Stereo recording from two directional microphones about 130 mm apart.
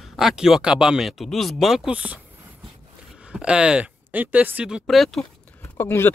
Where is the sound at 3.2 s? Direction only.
5° right (ahead or behind).